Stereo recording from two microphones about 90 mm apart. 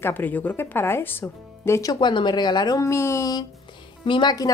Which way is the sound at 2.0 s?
60° left (ahead or behind).